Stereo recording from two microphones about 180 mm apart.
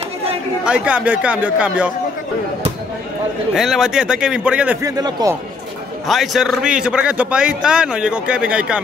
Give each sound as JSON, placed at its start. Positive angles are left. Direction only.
{"t": 0.7, "sound": "speech", "side_deg": -5}
{"t": 3.5, "sound": "a man's voice", "side_deg": 0}
{"t": 4.8, "sound": "a man's voice", "side_deg": -20}
{"t": 6.0, "sound": "a man's voice", "side_deg": 0}